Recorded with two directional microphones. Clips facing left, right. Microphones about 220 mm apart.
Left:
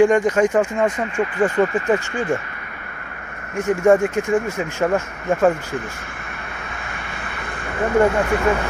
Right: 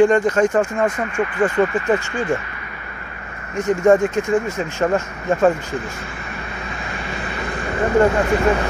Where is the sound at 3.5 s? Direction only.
10° left (ahead or behind).